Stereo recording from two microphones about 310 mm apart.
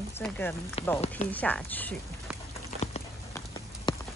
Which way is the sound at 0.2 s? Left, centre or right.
Centre.